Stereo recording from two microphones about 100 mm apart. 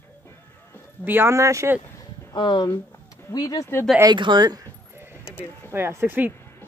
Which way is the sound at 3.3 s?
40° left (ahead or behind).